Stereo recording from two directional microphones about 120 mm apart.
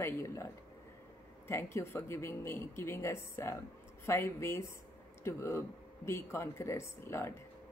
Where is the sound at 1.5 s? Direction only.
20° left (ahead or behind).